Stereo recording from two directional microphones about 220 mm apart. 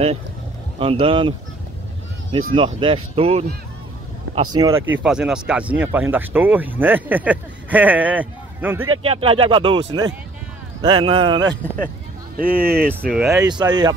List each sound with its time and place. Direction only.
0.7 s speech: 25° right (ahead or behind)
2.5 s speech: 25° right (ahead or behind)
4.5 s speech: 15° right (ahead or behind)
5.0 s speech: 5° right (ahead or behind)
9.0 s speech: 25° right (ahead or behind)
12.4 s speech: 40° right (ahead or behind)
12.8 s speech: 5° left (ahead or behind)
13.4 s speech: 20° right (ahead or behind)